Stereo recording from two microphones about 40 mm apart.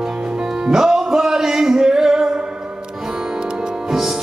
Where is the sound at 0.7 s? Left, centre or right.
Centre.